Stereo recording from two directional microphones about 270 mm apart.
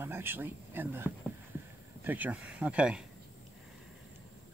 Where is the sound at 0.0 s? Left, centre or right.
Centre.